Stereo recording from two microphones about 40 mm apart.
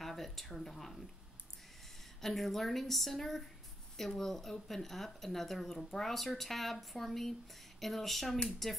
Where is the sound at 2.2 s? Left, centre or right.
Centre.